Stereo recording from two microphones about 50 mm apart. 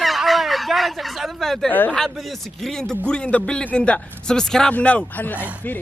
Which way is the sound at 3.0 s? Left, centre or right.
Left.